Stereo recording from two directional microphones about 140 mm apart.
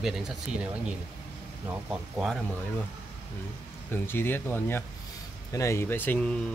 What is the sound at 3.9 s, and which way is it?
Speech, 15° left (ahead or behind).